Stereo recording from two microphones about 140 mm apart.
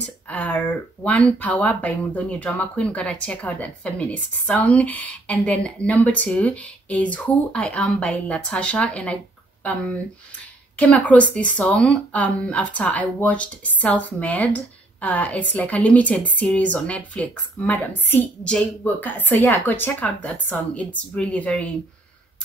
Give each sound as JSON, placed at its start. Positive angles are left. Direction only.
{"t": 0.3, "sound": "speech", "side_deg": 10}